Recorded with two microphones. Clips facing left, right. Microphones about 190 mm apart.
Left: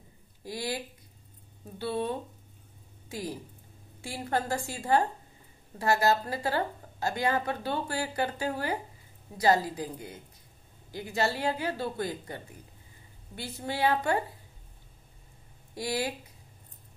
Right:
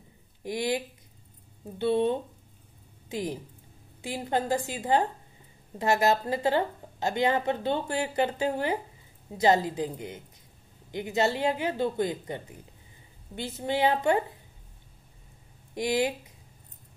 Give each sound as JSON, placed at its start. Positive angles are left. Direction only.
{"t": 0.4, "sound": "a woman's voice", "side_deg": -20}
{"t": 15.7, "sound": "speech", "side_deg": -20}